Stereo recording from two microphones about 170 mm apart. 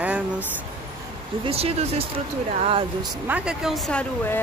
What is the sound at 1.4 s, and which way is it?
Speech, 35° right (ahead or behind).